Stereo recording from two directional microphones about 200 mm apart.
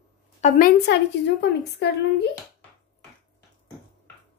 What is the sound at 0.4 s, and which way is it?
A woman's voice, 40° left (ahead or behind).